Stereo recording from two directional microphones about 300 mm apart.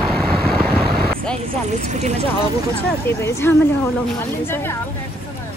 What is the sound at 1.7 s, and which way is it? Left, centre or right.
Speech, right.